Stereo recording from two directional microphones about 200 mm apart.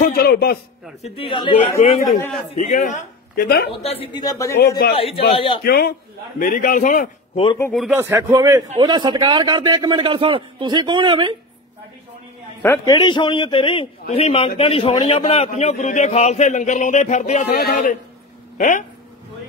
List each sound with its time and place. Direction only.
0.0 s a man's voice: 45° left (ahead or behind)
1.0 s a man's voice: 30° left (ahead or behind); by 3.7 s 50° left (ahead or behind)
3.8 s a man's voice: 30° left (ahead or behind)
4.6 s a man's voice: 55° left (ahead or behind)
4.9 s a man's voice: 30° left (ahead or behind)
5.6 s a man's voice: 50° left (ahead or behind)
7.7 s speech: centre (ahead or behind)
8.0 s a man's voice: 15° right (ahead or behind)
12.6 s a man's voice: 15° left (ahead or behind); by 18.9 s 40° left (ahead or behind)